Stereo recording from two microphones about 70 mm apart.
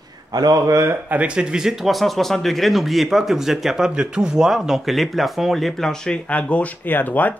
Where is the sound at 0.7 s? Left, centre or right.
Right.